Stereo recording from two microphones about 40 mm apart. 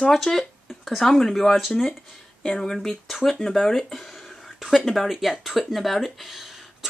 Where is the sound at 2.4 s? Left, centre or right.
Centre.